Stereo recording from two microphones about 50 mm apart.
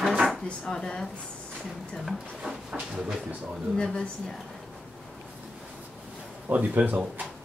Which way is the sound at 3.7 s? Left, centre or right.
Centre.